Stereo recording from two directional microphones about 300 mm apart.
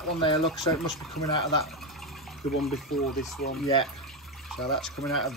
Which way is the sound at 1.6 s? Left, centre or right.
Centre.